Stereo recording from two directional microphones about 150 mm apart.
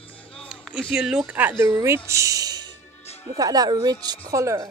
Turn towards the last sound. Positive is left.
turn(degrees=-20)  # may be behind; listen again after turning